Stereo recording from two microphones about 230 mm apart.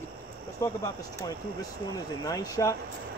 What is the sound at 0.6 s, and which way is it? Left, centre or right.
Speech, centre.